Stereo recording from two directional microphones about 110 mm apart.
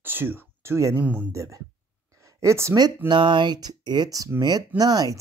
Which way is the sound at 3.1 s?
45° right (ahead or behind).